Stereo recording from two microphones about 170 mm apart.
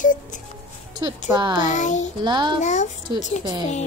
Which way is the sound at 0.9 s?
25° right (ahead or behind).